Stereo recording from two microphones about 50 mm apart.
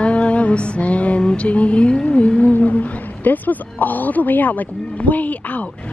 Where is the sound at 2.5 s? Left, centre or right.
Left.